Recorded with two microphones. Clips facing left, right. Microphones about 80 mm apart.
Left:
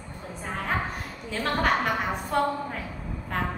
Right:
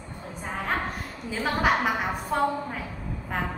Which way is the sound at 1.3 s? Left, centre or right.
Centre.